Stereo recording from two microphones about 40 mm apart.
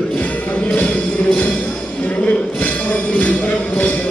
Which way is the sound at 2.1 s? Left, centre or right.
Left.